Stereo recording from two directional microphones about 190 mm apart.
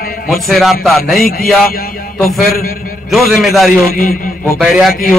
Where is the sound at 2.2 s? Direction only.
Centre (ahead or behind).